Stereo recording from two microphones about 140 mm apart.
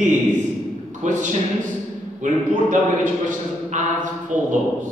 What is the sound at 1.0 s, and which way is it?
A man's voice, 60° right (ahead or behind).